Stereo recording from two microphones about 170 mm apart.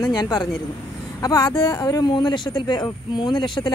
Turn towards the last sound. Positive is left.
turn(degrees=25)  # may be behind; listen again after turning